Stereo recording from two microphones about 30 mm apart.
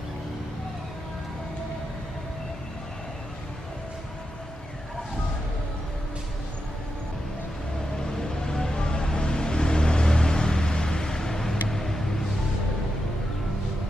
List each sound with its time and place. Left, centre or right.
8.4 s vehicle: left